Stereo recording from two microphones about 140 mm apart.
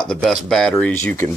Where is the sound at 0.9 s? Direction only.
15° left (ahead or behind).